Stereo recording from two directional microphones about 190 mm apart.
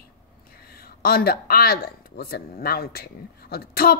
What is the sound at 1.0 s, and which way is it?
Speech, 50° left (ahead or behind).